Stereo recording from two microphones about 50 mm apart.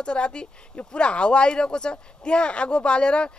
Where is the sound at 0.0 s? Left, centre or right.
Centre.